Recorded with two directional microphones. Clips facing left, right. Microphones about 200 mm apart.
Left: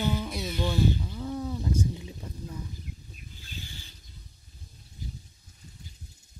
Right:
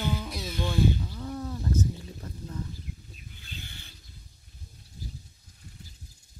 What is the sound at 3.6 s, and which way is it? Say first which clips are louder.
Pulleys: left 2 dB; 60° right (ahead or behind).